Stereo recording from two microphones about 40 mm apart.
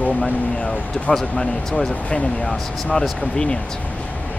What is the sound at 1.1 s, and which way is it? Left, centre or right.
Speech, centre.